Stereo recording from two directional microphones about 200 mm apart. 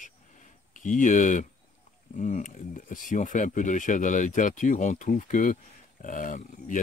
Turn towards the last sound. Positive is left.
turn(degrees=40)  # may be behind; listen again after turning